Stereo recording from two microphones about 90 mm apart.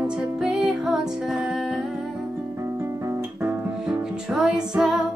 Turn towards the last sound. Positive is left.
turn(degrees=-5)  # may be behind; listen again after turning